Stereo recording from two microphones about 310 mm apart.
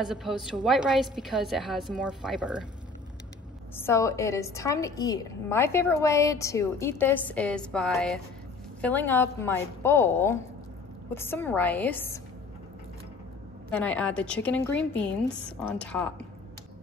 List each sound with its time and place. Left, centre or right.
0.0 s a woman's voice: centre
3.7 s a woman's voice: centre
13.7 s a woman's voice: centre